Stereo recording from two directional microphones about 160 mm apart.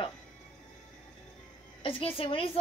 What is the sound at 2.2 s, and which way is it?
Speech, 35° left (ahead or behind).